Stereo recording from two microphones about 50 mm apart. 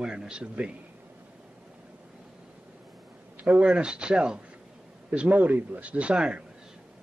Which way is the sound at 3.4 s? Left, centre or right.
Right.